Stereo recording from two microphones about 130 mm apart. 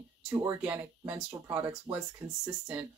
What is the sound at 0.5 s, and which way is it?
Speech, 15° right (ahead or behind).